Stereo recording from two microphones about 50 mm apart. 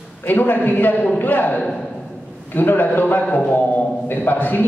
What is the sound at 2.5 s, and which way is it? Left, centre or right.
A man's voice, left.